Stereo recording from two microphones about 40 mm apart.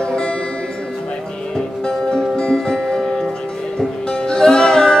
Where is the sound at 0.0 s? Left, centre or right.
Left.